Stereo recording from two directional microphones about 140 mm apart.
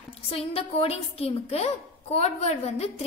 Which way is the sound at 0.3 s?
45° left (ahead or behind).